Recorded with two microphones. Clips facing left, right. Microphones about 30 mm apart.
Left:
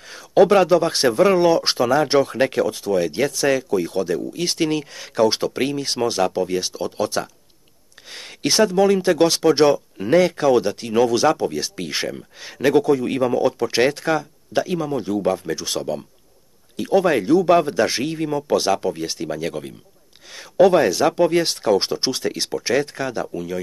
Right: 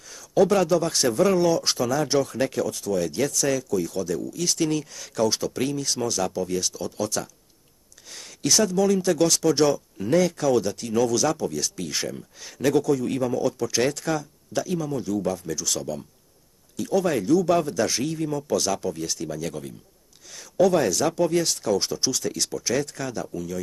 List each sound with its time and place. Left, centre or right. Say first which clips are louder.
0.1 s speech: left 6 dB; left